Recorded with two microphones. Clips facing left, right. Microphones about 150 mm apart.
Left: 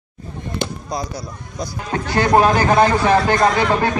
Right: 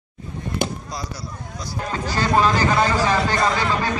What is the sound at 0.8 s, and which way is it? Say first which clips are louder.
Speech: left 6 dB; 50° left (ahead or behind).